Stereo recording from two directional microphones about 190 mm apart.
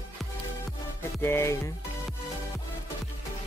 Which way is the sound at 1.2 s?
15° left (ahead or behind).